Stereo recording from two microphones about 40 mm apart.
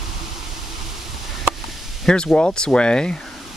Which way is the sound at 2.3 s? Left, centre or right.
Left.